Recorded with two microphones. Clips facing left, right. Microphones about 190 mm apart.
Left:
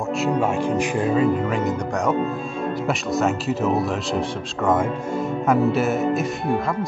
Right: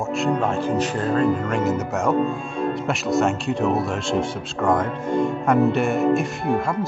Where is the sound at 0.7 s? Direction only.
10° left (ahead or behind).